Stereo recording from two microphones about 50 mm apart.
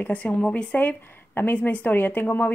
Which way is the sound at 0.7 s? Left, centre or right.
Left.